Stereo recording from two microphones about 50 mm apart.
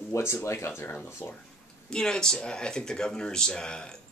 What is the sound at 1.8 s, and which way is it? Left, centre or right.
Speech, centre.